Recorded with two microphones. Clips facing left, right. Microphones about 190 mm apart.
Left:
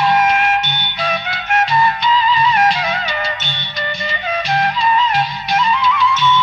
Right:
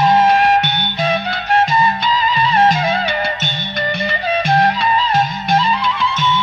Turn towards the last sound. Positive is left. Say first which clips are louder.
# right 1 dB
turn(degrees=-30)  # may be behind; listen again after turning